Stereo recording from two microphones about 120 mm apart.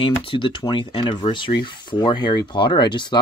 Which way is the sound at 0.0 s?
45° left (ahead or behind).